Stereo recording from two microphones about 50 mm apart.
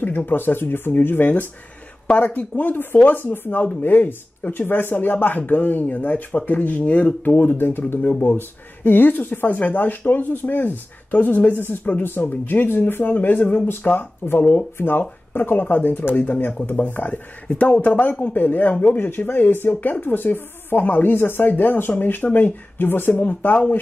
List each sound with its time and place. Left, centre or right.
0.0 s a woman's voice: left
2.1 s a woman's voice: left